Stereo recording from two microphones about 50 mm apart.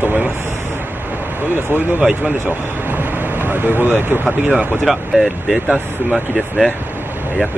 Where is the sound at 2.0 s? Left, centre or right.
Centre.